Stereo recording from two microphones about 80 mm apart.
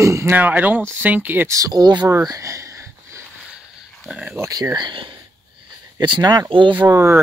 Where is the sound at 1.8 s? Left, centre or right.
Right.